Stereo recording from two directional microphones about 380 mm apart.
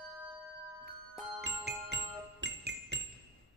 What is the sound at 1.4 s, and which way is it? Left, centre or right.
Jingle bell, right.